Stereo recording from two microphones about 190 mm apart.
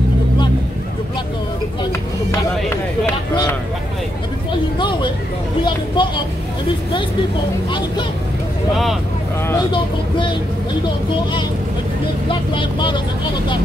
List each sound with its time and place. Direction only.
4.7 s a sound: 25° left (ahead or behind)
6.0 s vehicle: 25° left (ahead or behind)
12.3 s speech: 25° left (ahead or behind)